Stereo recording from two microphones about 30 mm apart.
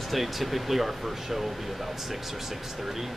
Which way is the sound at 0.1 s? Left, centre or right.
Centre.